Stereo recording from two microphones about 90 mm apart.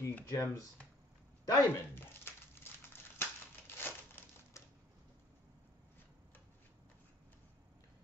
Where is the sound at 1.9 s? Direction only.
25° left (ahead or behind).